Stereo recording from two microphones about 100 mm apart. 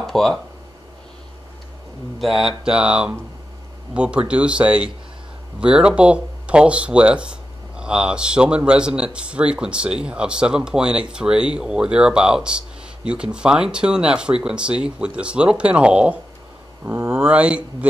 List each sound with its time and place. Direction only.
0.0 s speech: 5° left (ahead or behind)
2.1 s speech: centre (ahead or behind)